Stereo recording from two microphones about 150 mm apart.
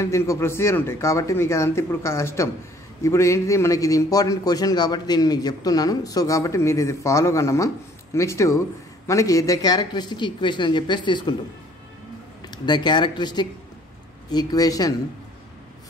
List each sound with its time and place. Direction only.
0.0 s a man's voice: 20° left (ahead or behind)
12.4 s a man's voice: 30° left (ahead or behind)